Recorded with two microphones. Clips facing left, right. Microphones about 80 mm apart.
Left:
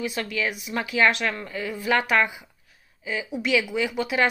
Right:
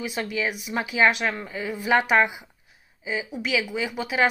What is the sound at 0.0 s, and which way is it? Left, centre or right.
Speech, centre.